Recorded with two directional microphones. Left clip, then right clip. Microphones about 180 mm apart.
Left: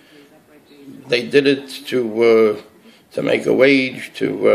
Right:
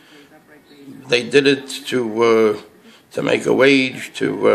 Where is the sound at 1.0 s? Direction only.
15° right (ahead or behind).